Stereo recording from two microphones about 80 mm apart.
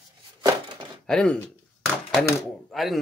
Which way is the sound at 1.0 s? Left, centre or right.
Centre.